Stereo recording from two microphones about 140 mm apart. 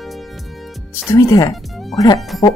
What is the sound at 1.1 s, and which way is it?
Speech, 25° left (ahead or behind).